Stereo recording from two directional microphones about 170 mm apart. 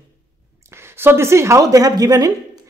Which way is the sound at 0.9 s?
15° right (ahead or behind).